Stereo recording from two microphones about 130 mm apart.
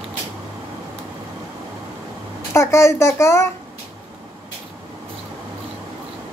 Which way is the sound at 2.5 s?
20° left (ahead or behind).